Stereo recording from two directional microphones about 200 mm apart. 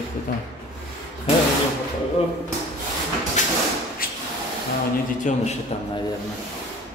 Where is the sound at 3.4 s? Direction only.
40° left (ahead or behind).